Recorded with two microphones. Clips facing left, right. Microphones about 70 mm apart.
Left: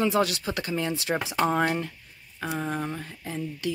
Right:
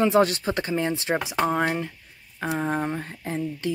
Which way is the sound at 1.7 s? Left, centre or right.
Centre.